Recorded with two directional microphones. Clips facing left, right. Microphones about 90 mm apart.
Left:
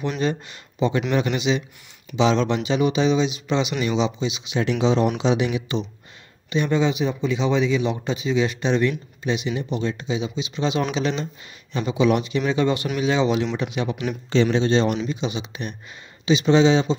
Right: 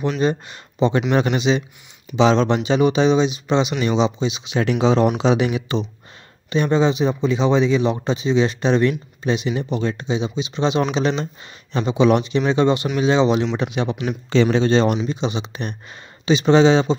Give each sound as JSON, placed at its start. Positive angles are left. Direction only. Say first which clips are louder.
{"t": 0.2, "sound": "speech", "louder": "right 4 dB", "side_deg": -25}
{"t": 4.6, "sound": "speech", "louder": "right 3 dB", "side_deg": -50}
{"t": 10.0, "sound": "speech", "louder": "right 3 dB", "side_deg": -30}
{"t": 14.5, "sound": "speech", "louder": "right 3 dB", "side_deg": -50}
{"t": 15.0, "sound": "speech", "louder": "right 3 dB", "side_deg": -30}